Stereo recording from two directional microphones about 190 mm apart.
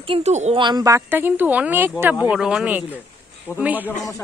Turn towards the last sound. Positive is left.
turn(degrees=-10)  # may be behind; listen again after turning